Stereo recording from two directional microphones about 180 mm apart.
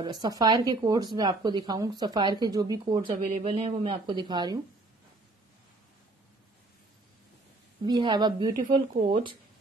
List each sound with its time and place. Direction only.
0.0 s speech: 20° right (ahead or behind)
3.3 s speech: 40° right (ahead or behind)
7.8 s speech: 25° right (ahead or behind)